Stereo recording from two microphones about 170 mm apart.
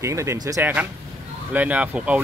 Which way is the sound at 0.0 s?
15° right (ahead or behind).